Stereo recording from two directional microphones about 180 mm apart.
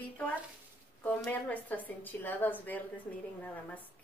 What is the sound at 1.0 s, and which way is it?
A woman's voice, 10° left (ahead or behind).